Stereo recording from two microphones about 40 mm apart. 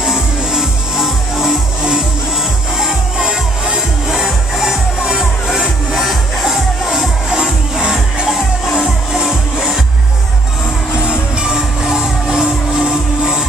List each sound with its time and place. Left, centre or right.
0.0 s music: centre
1.8 s music: centre
5.5 s music: centre
11.0 s music: right